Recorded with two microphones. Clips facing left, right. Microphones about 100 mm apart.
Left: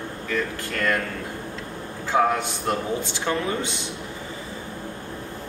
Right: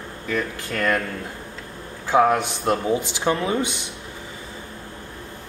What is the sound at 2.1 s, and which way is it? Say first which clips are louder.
A man's voice: right 4 dB; 15° right (ahead or behind).